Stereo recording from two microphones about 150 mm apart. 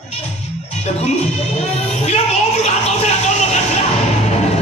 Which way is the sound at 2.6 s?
50° left (ahead or behind).